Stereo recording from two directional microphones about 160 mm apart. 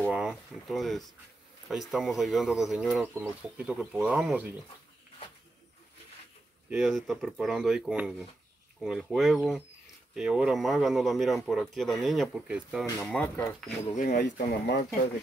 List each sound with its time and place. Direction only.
0.1 s speech: 5° right (ahead or behind)
6.7 s speech: centre (ahead or behind)
13.9 s speech: 70° left (ahead or behind); by 14.8 s 85° left